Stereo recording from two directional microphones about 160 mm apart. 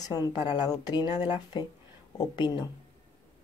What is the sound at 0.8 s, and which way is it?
Speech, 25° left (ahead or behind).